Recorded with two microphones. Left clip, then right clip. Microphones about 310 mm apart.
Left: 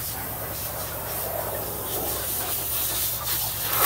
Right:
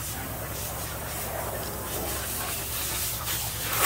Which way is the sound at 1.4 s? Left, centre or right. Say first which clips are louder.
Left 2 dB; left.